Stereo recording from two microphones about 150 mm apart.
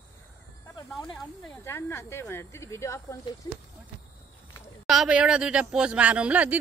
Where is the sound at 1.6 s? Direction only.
20° left (ahead or behind).